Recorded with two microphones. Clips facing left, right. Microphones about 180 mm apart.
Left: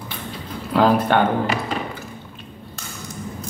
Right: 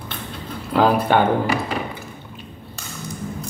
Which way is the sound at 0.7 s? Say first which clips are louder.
Even; 5° right (ahead or behind).